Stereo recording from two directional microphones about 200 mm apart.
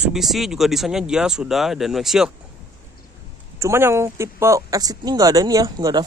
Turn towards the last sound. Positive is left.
turn(degrees=-15)  # may be behind; listen again after turning